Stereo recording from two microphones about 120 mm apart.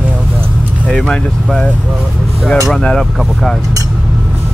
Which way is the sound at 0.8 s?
5° left (ahead or behind).